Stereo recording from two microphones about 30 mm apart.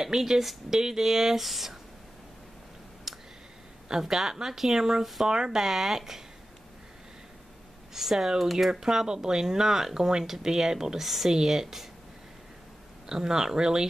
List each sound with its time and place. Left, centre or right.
0.0 s speech: centre
3.1 s clicking: centre
4.1 s speech: centre
7.9 s speech: centre
8.2 s speech: centre
8.5 s speech: centre
11.0 s speech: centre
13.1 s speech: right